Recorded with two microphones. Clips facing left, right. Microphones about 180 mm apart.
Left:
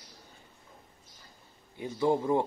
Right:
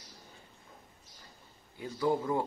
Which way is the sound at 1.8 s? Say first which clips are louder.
Left 3 dB; 25° left (ahead or behind).